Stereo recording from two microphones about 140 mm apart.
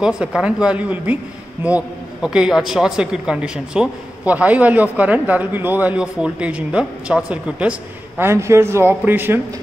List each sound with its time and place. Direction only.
0.0 s speech: 5° right (ahead or behind)
8.2 s speech: 20° right (ahead or behind)